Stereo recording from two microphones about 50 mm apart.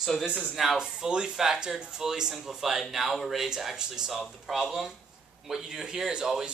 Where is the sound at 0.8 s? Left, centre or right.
Centre.